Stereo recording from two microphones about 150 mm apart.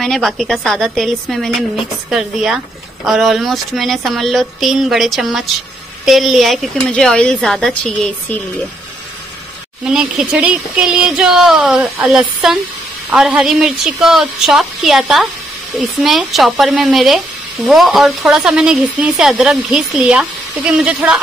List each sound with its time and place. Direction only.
0.0 s speech: centre (ahead or behind)
9.8 s speech: 5° right (ahead or behind)